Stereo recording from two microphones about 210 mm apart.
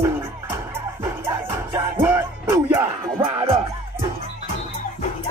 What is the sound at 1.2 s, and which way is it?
Music, 10° right (ahead or behind).